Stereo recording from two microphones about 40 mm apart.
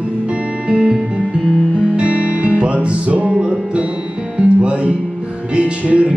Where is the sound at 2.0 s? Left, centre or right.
Right.